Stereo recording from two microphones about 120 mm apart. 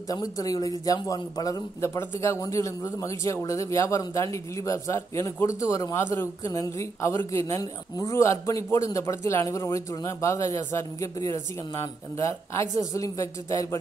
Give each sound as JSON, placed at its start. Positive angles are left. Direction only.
{"t": 0.1, "sound": "speech", "side_deg": 30}